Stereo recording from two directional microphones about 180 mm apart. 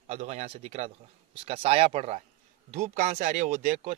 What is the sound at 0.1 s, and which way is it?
Speech, 40° right (ahead or behind).